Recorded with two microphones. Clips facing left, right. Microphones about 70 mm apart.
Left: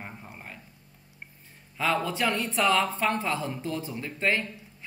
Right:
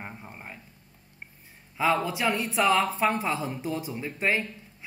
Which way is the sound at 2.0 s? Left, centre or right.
Centre.